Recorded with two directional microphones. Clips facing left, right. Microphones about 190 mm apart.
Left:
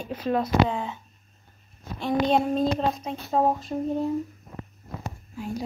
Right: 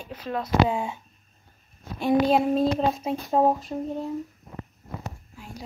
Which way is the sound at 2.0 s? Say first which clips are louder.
Right 2 dB; 5° right (ahead or behind).